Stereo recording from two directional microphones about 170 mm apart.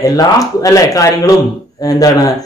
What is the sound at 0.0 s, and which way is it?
Speech, 20° left (ahead or behind).